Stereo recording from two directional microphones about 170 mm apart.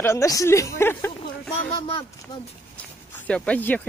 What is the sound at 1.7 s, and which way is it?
Speech, 35° left (ahead or behind).